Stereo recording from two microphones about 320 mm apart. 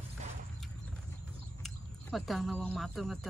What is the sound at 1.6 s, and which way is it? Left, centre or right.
Speech, centre.